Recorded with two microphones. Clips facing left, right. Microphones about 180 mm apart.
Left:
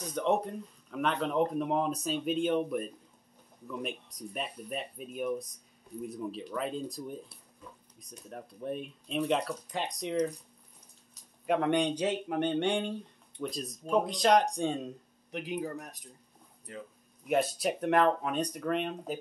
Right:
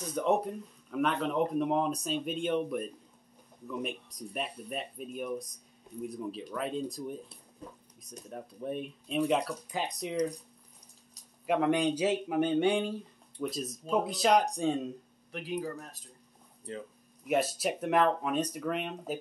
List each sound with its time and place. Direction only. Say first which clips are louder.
0.1 s speech: right 1 dB; 5° right (ahead or behind)
8.3 s speech: even; centre (ahead or behind)
11.4 s speech: even; centre (ahead or behind)
15.3 s speech: even; 20° left (ahead or behind)
17.3 s speech: left 1 dB; centre (ahead or behind)